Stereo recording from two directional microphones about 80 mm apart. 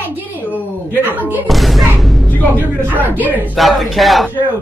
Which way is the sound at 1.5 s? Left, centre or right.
Centre.